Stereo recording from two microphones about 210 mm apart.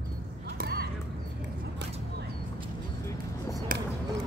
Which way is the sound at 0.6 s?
50° right (ahead or behind).